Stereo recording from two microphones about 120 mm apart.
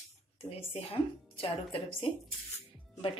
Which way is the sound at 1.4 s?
50° left (ahead or behind).